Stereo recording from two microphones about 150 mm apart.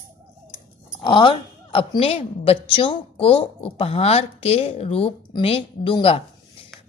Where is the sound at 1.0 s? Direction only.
35° left (ahead or behind).